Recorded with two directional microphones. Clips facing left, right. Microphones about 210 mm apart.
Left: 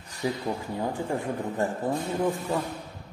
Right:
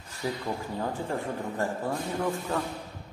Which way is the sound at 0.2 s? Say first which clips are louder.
Left 3 dB; 15° left (ahead or behind).